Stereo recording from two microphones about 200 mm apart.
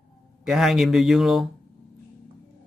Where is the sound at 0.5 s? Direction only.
Centre (ahead or behind).